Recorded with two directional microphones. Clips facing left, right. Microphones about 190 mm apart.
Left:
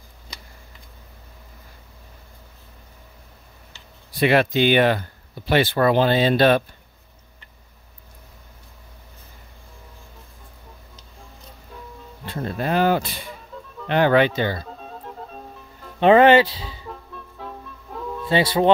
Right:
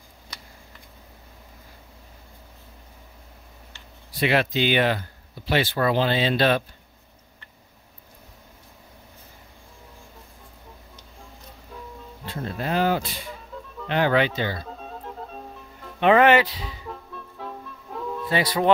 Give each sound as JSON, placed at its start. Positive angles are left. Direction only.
{"t": 4.1, "sound": "speech", "side_deg": 50}
{"t": 12.3, "sound": "speech", "side_deg": 55}
{"t": 13.3, "sound": "music", "side_deg": 0}
{"t": 13.8, "sound": "speech", "side_deg": 55}
{"t": 14.6, "sound": "music", "side_deg": 0}
{"t": 16.0, "sound": "speech", "side_deg": 30}
{"t": 16.8, "sound": "music", "side_deg": 0}
{"t": 18.3, "sound": "speech", "side_deg": 25}